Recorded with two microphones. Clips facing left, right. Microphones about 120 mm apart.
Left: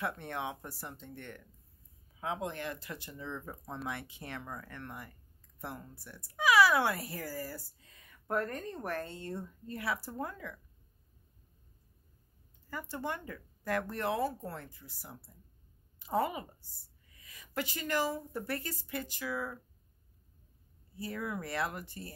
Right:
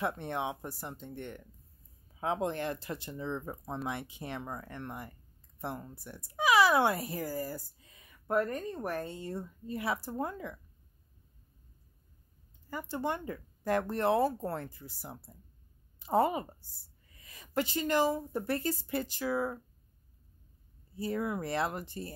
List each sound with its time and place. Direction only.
0.0 s speech: 20° right (ahead or behind)
2.1 s speech: 35° right (ahead or behind); by 9.8 s 10° right (ahead or behind)
10.0 s speech: 25° right (ahead or behind)
12.6 s a woman's voice: 20° right (ahead or behind)
21.0 s speech: 25° right (ahead or behind)